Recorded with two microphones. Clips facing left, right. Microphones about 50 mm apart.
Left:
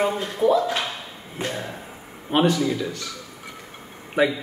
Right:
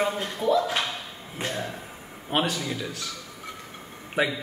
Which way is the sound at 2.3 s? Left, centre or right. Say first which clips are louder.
Left 7 dB; centre.